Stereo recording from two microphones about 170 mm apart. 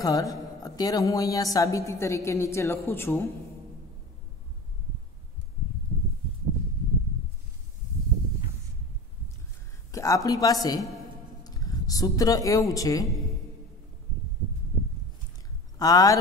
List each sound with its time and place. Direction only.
0.0 s a woman's voice: 20° left (ahead or behind)
9.8 s a woman's voice: 20° left (ahead or behind)
15.8 s a woman's voice: 20° left (ahead or behind)